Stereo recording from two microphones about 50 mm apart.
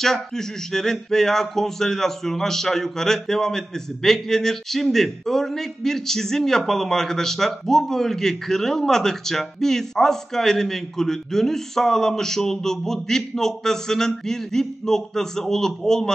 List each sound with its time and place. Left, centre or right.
0.0 s speech: centre